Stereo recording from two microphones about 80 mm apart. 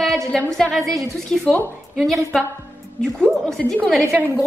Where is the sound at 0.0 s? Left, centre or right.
Centre.